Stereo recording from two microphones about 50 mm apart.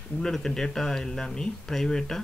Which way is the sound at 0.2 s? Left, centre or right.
Centre.